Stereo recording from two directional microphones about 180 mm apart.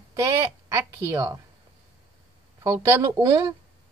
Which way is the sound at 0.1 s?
15° right (ahead or behind).